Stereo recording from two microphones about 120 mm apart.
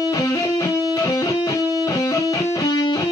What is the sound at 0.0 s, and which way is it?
Music, 30° left (ahead or behind).